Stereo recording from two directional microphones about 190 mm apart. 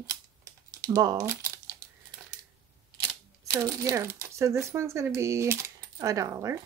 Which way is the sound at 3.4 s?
15° right (ahead or behind).